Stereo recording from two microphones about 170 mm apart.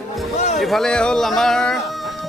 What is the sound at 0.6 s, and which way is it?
Speech, centre (ahead or behind).